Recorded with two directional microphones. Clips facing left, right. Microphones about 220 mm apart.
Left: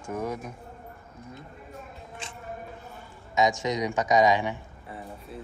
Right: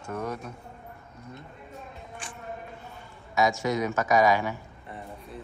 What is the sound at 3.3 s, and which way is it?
A man's voice, 20° left (ahead or behind).